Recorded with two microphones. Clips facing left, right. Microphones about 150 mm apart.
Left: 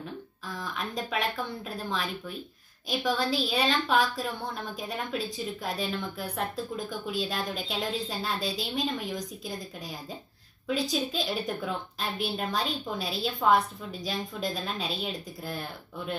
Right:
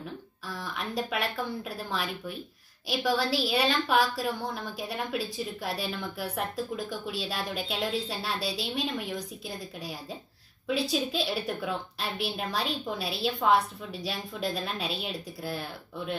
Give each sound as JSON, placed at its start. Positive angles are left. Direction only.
{"t": 0.6, "sound": "a woman's voice", "side_deg": -5}
{"t": 10.7, "sound": "a woman's voice", "side_deg": -5}